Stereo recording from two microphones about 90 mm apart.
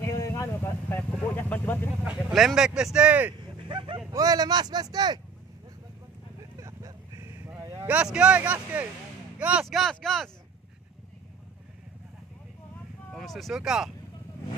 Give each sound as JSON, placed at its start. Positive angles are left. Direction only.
{"t": 0.0, "sound": "vehicle", "side_deg": 35}
{"t": 2.3, "sound": "speech", "side_deg": 0}
{"t": 3.6, "sound": "fowl", "side_deg": -65}
{"t": 4.1, "sound": "speech", "side_deg": -45}
{"t": 6.6, "sound": "vehicle", "side_deg": -35}
{"t": 7.9, "sound": "speech", "side_deg": -10}
{"t": 9.7, "sound": "speech", "side_deg": 0}
{"t": 13.1, "sound": "vehicle", "side_deg": 0}
{"t": 13.6, "sound": "speech", "side_deg": -5}